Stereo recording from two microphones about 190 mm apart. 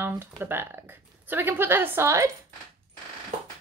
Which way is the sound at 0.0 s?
10° right (ahead or behind).